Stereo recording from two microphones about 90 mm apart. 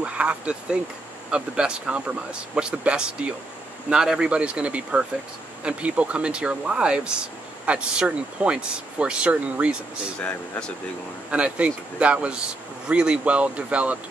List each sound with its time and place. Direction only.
0.0 s speech: 15° right (ahead or behind)
11.2 s speech: 15° right (ahead or behind)